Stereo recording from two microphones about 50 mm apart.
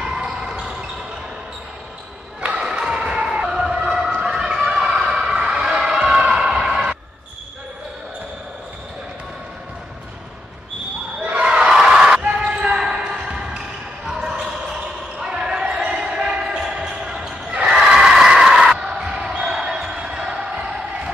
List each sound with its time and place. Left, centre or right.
0.0 s basketball bounce: centre
2.4 s emergency vehicle: right
4.2 s a sound: centre
11.1 s basketball bounce: right
11.4 s a sound: centre
12.2 s basketball bounce: centre
17.5 s crowd: right
17.7 s basketball bounce: centre